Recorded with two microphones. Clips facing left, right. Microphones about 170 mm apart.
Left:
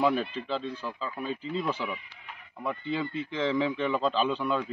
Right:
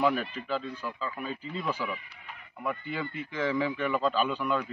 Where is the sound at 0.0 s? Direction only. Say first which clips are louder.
Left 1 dB; 25° left (ahead or behind).